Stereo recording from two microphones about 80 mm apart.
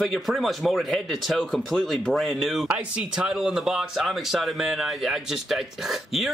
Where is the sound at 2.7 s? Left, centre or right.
Centre.